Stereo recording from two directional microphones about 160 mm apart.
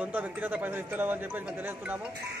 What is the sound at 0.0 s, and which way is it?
A man's voice, 10° right (ahead or behind).